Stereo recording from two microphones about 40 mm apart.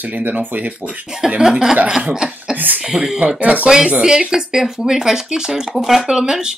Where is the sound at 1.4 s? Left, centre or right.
Centre.